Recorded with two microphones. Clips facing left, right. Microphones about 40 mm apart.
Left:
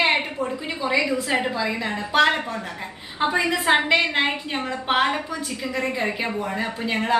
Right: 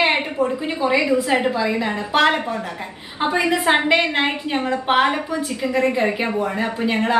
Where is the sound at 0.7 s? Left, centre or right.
Centre.